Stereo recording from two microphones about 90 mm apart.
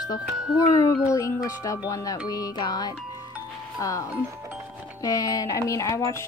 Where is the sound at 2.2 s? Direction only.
45° left (ahead or behind).